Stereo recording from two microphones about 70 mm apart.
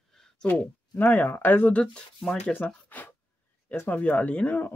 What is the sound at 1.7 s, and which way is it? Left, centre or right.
Speech, centre.